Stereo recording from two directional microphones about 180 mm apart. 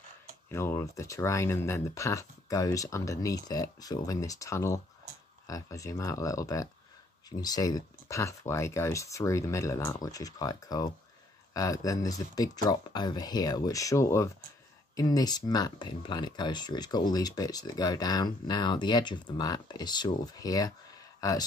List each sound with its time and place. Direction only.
0.5 s speech: 15° left (ahead or behind)